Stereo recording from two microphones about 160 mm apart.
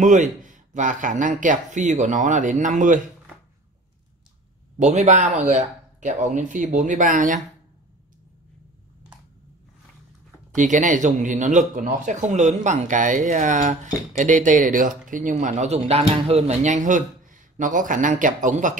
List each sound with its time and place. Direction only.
0.0 s speech: 50° right (ahead or behind)
4.7 s speech: 50° right (ahead or behind)
10.5 s speech: 50° right (ahead or behind)